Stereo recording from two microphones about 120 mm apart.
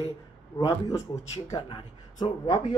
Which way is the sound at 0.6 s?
30° left (ahead or behind).